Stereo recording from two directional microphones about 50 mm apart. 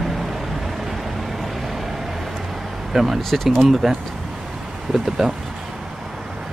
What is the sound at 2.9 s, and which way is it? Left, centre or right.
Speech, centre.